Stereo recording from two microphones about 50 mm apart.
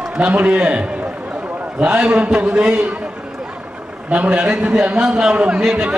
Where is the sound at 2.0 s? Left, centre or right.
Centre.